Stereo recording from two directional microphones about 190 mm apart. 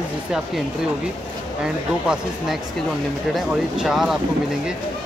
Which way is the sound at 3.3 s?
Centre (ahead or behind).